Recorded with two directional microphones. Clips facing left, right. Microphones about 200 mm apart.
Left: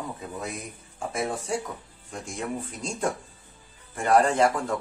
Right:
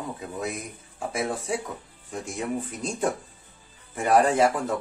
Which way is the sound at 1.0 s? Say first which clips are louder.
Right 1 dB; centre (ahead or behind).